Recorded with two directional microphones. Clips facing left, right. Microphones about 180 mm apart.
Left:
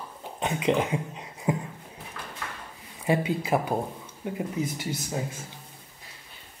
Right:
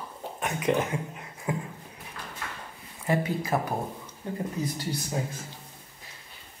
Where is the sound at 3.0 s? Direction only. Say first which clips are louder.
Left 2 dB; 15° left (ahead or behind).